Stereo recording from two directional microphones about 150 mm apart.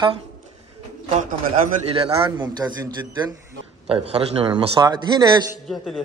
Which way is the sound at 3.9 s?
40° right (ahead or behind).